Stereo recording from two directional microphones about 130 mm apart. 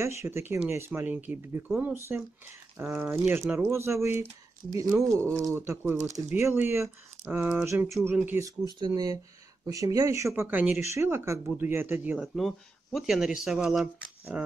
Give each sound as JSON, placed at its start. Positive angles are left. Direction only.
{"t": 0.0, "sound": "speech", "side_deg": -20}
{"t": 12.4, "sound": "speech", "side_deg": 0}